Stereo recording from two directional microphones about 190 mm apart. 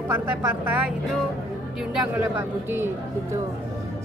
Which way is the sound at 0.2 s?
10° right (ahead or behind).